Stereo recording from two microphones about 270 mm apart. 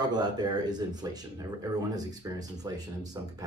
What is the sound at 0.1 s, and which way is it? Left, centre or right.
Speech, centre.